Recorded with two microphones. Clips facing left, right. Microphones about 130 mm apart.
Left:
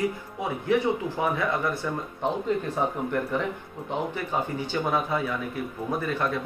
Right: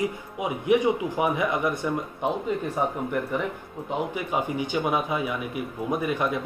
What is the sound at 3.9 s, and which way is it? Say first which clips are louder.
Speech: right 1 dB; 10° right (ahead or behind).